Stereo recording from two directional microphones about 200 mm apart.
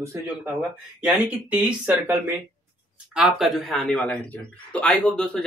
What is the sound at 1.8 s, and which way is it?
A man's voice, 10° right (ahead or behind).